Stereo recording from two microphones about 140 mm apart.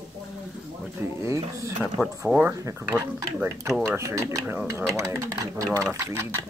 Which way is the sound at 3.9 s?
20° right (ahead or behind).